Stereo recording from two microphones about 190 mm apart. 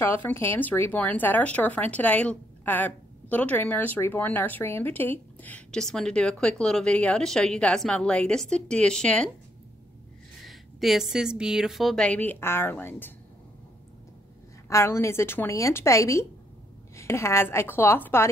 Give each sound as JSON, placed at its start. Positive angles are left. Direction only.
{"t": 0.1, "sound": "speech", "side_deg": 10}
{"t": 10.4, "sound": "a woman's voice", "side_deg": 0}
{"t": 14.7, "sound": "speech", "side_deg": 15}